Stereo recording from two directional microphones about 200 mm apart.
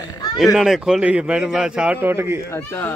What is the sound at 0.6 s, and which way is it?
A man's voice, centre (ahead or behind).